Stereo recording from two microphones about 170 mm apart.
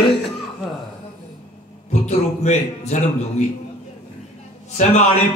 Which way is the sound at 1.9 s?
45° left (ahead or behind).